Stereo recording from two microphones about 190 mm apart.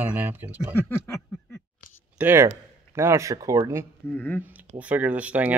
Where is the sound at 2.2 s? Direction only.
15° right (ahead or behind).